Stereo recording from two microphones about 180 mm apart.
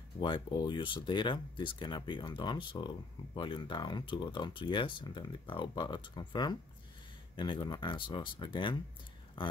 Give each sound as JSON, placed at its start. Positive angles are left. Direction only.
{"t": 0.2, "sound": "speech", "side_deg": 25}